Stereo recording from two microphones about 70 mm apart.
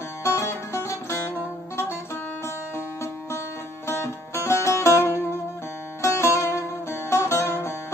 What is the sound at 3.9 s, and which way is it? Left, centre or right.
Music, left.